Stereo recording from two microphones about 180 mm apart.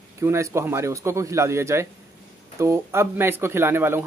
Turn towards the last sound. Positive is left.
turn(degrees=-10)  # may be behind; listen again after turning